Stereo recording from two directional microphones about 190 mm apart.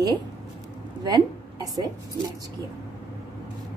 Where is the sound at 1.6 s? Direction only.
20° right (ahead or behind).